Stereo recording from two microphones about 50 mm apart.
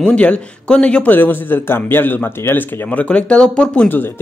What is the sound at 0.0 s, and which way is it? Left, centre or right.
A man's voice, left.